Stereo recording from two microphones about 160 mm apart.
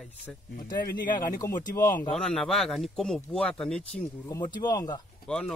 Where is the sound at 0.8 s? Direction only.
55° left (ahead or behind).